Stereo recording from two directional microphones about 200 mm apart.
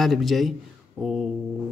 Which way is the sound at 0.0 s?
Centre (ahead or behind).